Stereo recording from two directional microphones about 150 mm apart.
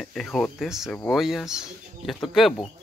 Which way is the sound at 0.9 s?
10° left (ahead or behind).